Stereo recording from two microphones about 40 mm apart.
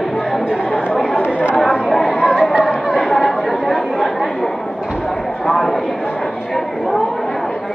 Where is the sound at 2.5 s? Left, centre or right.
Centre.